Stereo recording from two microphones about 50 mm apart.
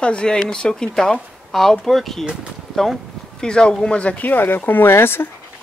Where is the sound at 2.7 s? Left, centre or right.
Centre; by 5.3 s left.